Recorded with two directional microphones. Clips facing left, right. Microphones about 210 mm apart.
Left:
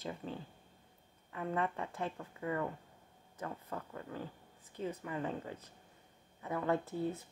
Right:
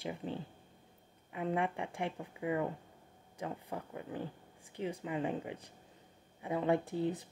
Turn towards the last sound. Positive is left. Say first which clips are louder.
# right 3 dB
turn(degrees=-15)  # may be behind; listen again after turning